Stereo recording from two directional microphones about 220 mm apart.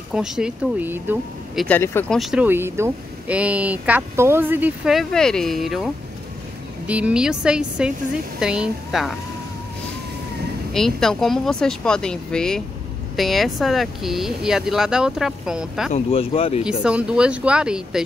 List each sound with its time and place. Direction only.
0.1 s speech: 5° right (ahead or behind)
1.8 s speech: 10° left (ahead or behind)
2.1 s speech: 5° right (ahead or behind)
6.9 s speech: 5° right (ahead or behind)
10.7 s speech: centre (ahead or behind)
15.9 s speech: 25° left (ahead or behind)
16.6 s speech: 5° right (ahead or behind)